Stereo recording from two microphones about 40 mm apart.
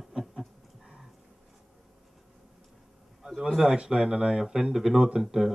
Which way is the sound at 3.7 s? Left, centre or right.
Right.